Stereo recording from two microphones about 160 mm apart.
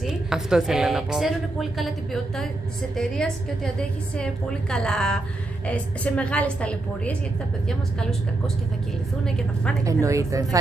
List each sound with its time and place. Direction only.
0.0 s a woman's voice: 5° right (ahead or behind)
4.2 s a woman's voice: 5° left (ahead or behind)
9.2 s a woman's voice: 5° left (ahead or behind)
9.8 s speech: 20° right (ahead or behind)